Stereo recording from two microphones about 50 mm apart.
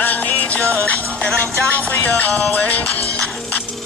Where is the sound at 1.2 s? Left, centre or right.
Left.